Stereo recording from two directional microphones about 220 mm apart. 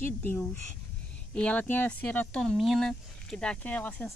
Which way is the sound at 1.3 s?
5° left (ahead or behind).